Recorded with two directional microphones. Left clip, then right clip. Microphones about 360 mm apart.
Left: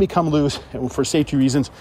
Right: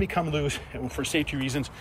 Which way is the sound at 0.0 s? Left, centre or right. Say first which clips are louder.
Left 9 dB; left.